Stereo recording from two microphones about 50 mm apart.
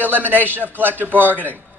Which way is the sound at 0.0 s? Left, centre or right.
Right.